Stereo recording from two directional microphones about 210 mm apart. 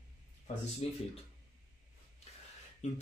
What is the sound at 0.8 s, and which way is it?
Speech, 30° left (ahead or behind).